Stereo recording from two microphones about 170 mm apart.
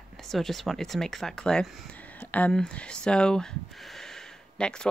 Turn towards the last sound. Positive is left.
turn(degrees=5)  # may be behind; listen again after turning